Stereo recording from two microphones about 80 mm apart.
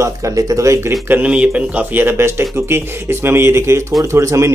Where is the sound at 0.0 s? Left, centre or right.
Right.